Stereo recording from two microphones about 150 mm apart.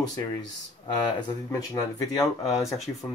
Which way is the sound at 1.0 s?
20° left (ahead or behind).